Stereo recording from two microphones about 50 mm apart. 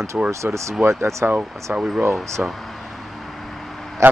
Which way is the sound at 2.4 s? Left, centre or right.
Right.